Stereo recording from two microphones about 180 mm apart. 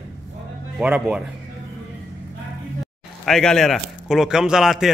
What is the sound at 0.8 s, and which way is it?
Speech, 5° right (ahead or behind).